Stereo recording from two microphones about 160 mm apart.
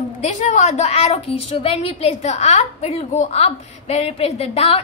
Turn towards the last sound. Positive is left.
turn(degrees=40)  # may be behind; listen again after turning